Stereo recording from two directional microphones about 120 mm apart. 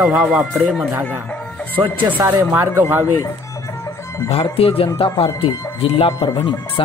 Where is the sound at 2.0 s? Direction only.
15° right (ahead or behind).